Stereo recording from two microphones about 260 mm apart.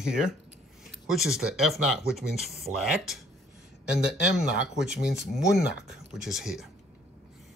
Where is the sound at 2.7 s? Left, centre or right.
Right.